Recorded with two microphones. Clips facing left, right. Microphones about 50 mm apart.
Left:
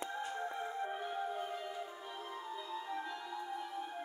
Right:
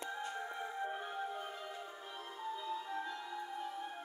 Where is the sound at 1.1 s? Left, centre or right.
Centre.